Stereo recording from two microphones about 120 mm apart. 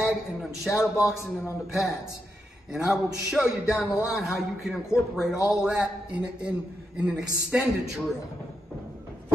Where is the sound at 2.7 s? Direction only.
5° right (ahead or behind).